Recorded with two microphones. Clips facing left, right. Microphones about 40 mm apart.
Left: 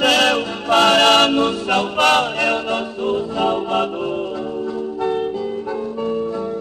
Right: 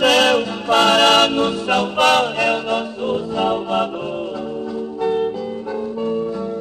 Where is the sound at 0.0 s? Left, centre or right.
Left.